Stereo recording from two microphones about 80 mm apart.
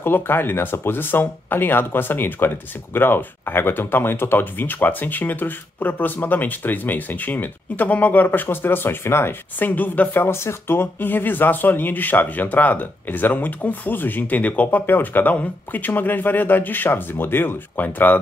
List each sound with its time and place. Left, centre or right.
0.0 s speech: left